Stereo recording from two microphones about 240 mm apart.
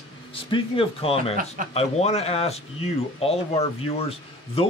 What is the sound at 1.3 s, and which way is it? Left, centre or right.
Speech, right.